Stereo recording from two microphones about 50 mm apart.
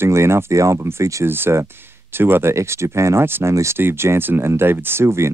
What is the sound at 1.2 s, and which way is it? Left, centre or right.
Speech, right.